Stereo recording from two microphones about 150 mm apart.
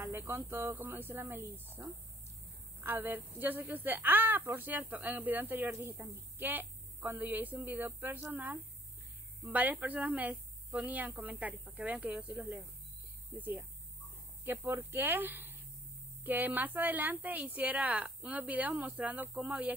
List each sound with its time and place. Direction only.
0.0 s a woman's voice: 15° right (ahead or behind)